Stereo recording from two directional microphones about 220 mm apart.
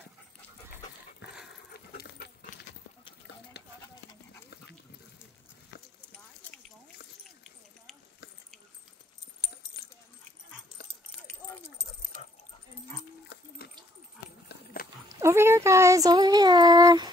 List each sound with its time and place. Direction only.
1.2 s dog: 50° left (ahead or behind)
3.8 s clip-clop: 15° left (ahead or behind)
11.2 s keys jangling: 10° left (ahead or behind)
13.3 s a sound: 50° left (ahead or behind)
14.5 s dog: 45° left (ahead or behind)
15.0 s speech: 10° right (ahead or behind)